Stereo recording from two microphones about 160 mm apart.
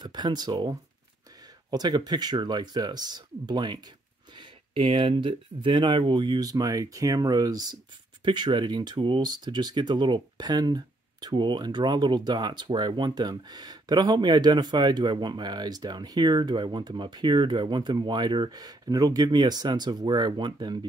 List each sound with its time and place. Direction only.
0.0 s speech: 25° right (ahead or behind)